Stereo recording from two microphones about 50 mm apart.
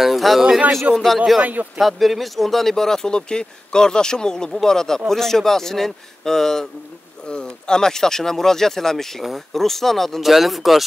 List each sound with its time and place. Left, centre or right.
0.0 s a sound: centre
0.9 s speech: centre
1.4 s speech: right
1.8 s speech: centre